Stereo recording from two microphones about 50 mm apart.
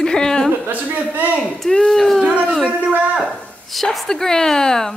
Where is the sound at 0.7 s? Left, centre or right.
Right.